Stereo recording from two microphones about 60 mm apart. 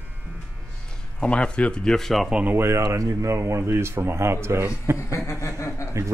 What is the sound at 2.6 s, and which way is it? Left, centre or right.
Speech, right.